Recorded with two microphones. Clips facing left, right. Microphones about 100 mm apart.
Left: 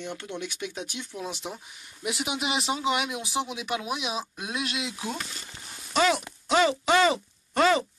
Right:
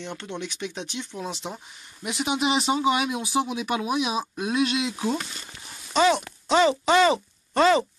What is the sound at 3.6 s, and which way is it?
Speech, 40° right (ahead or behind).